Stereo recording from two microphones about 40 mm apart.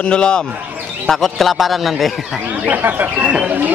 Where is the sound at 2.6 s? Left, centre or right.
Right.